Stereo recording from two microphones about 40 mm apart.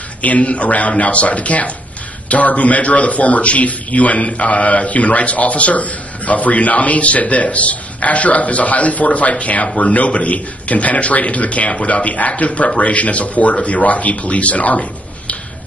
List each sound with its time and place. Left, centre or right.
0.2 s a man's voice: left